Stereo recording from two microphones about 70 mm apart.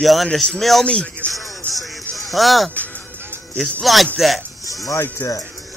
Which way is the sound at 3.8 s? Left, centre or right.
Centre.